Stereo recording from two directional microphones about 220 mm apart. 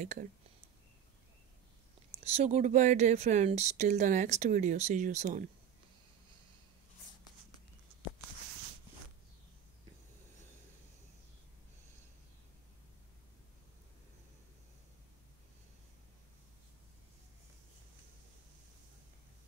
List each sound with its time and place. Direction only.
0.0 s speech: 35° right (ahead or behind)
2.1 s speech: 30° right (ahead or behind)